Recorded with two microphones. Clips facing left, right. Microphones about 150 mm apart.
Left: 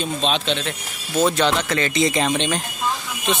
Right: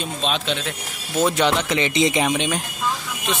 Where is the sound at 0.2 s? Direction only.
5° right (ahead or behind).